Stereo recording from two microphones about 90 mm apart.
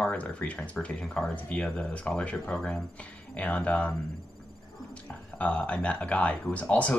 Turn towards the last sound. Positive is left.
turn(degrees=15)  # may be behind; listen again after turning